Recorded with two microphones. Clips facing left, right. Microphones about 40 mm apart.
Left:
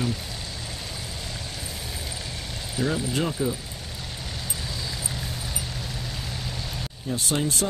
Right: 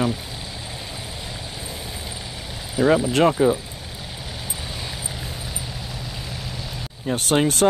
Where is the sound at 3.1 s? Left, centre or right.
Right.